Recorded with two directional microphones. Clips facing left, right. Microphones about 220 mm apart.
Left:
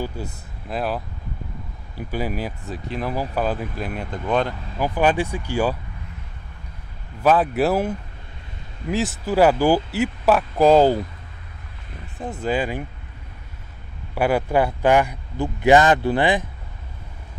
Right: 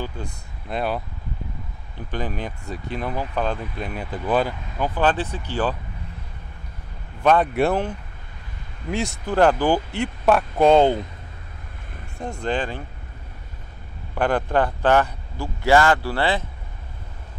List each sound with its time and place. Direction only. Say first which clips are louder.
0.0 s a man's voice: left 2 dB; 5° left (ahead or behind)
4.7 s a man's voice: left 2 dB; 10° left (ahead or behind)
7.2 s speech: even; centre (ahead or behind)
12.2 s a man's voice: left 2 dB; 5° left (ahead or behind)
14.1 s a man's voice: left 2 dB; 10° left (ahead or behind)